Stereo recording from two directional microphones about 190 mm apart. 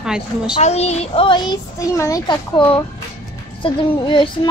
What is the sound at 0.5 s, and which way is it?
A child's voice, 35° left (ahead or behind).